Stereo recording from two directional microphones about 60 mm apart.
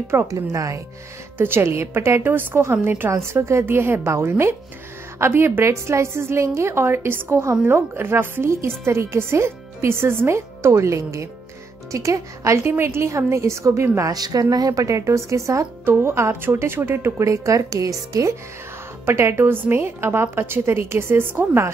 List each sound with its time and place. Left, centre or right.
0.3 s a woman's voice: right
1.4 s a woman's voice: right
3.1 s a woman's voice: right
13.9 s a woman's voice: right
15.8 s a woman's voice: right
17.2 s a woman's voice: right
19.0 s a woman's voice: right